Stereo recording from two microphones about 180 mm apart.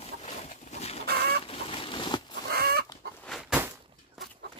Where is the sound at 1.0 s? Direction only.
60° right (ahead or behind).